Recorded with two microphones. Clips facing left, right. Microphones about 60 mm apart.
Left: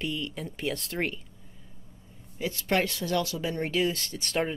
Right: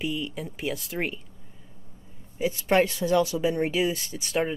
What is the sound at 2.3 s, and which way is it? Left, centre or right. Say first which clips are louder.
Speech: right 5 dB; centre.